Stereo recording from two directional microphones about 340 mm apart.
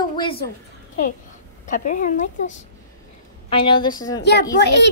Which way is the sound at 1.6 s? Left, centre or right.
Left.